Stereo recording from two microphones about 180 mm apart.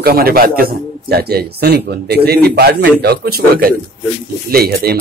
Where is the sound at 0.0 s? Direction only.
55° right (ahead or behind).